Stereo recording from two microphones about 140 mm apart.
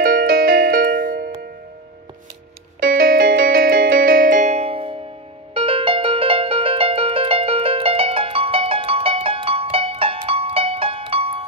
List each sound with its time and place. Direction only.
0.0 s music: 90° right
2.8 s music: 90° right; by 11.4 s 45° right (ahead or behind)